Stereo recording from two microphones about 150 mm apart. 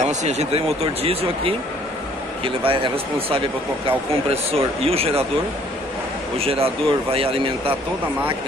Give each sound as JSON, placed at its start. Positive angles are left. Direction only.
{"t": 0.0, "sound": "speech", "side_deg": -50}
{"t": 6.3, "sound": "speech", "side_deg": -40}